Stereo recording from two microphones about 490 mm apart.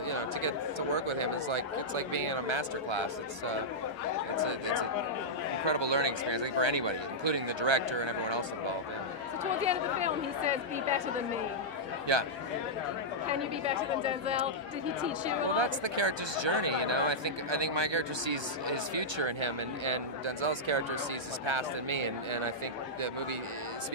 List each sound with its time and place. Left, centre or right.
0.1 s speech: right
9.7 s speech: centre
12.1 s speech: right
15.5 s speech: right